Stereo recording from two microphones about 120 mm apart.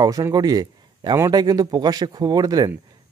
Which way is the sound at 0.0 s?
30° right (ahead or behind).